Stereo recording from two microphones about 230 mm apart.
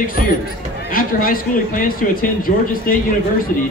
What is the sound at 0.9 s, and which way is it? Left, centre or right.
Speech, left.